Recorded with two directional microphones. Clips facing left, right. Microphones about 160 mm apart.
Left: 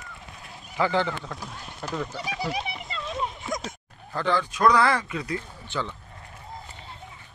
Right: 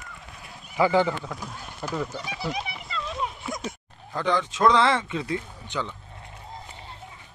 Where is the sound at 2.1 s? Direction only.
10° left (ahead or behind).